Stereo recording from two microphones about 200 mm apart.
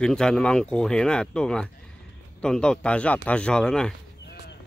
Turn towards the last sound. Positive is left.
turn(degrees=55)  # may be behind; listen again after turning